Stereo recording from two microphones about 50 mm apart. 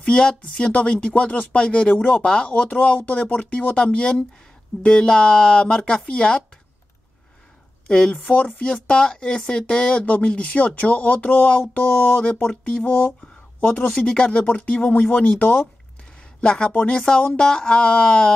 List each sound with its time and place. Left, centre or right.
0.0 s speech: centre
7.9 s speech: centre; by 11.5 s left
11.6 s a sound: left
12.4 s speech: centre
13.7 s speech: left
14.0 s speech: centre
14.4 s a sound: left
14.7 s speech: left
16.3 s speech: centre